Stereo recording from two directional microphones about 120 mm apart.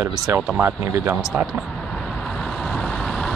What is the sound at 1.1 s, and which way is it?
Speech, centre (ahead or behind).